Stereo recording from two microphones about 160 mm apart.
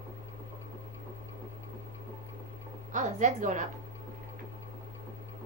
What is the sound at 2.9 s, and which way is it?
Speech, 50° right (ahead or behind).